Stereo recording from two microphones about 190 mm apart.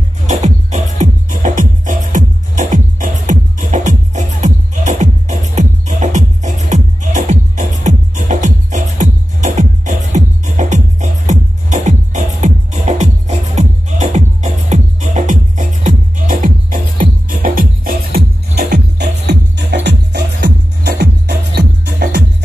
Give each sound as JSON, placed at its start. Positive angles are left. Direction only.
{"t": 0.3, "sound": "music", "side_deg": -40}